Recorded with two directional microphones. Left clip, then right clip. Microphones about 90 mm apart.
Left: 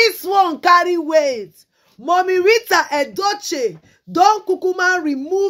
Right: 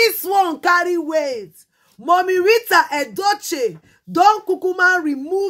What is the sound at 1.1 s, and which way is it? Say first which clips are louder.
Speech: left 5 dB; 30° left (ahead or behind).